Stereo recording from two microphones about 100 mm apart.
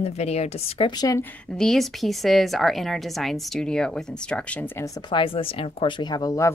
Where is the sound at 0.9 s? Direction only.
40° left (ahead or behind).